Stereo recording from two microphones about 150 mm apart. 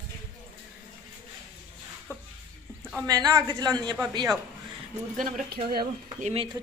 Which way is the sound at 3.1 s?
25° right (ahead or behind).